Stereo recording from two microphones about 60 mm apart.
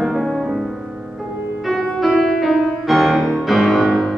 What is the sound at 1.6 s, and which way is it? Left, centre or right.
Music, centre.